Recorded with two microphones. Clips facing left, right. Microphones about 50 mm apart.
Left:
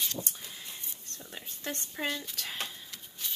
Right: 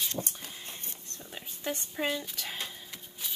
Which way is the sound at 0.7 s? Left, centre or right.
Right.